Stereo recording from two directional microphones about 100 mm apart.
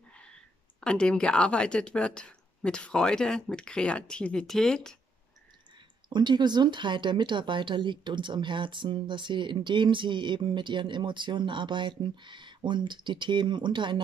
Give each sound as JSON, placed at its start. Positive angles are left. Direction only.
{"t": 0.7, "sound": "speech", "side_deg": 10}
{"t": 6.0, "sound": "speech", "side_deg": -50}